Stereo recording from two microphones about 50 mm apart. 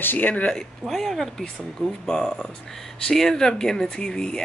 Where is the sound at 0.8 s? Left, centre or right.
Centre.